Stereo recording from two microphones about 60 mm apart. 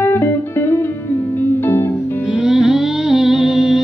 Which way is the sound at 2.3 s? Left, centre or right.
Centre.